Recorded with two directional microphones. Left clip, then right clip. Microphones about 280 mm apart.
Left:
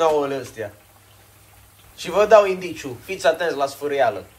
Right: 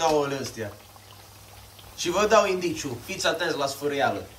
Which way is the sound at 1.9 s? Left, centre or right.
Centre.